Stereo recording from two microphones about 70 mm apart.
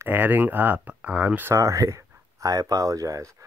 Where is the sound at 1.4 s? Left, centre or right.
Right.